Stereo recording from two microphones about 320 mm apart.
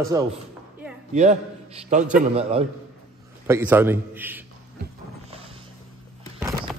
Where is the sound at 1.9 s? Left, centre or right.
Right.